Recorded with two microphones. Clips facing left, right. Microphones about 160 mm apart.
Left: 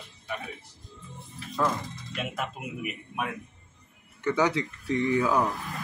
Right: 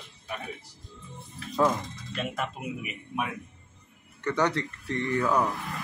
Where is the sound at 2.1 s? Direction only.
5° left (ahead or behind).